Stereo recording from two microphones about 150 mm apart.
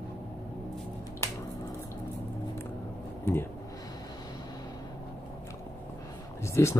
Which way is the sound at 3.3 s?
15° left (ahead or behind).